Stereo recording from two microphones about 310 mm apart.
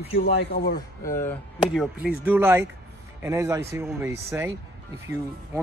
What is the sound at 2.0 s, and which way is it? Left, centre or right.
A man's voice, centre.